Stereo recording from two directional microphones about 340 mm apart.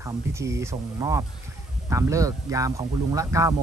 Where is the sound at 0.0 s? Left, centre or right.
Centre.